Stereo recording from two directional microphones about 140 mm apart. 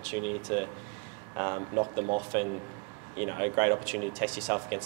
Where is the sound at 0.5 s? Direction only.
15° right (ahead or behind).